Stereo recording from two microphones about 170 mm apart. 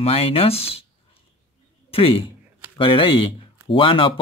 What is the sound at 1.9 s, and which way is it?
A man's voice, 35° left (ahead or behind).